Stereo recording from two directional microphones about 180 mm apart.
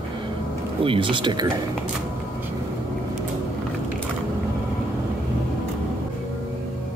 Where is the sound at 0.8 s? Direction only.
30° right (ahead or behind).